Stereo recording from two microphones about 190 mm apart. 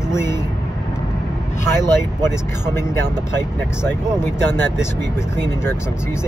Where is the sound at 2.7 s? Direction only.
10° left (ahead or behind).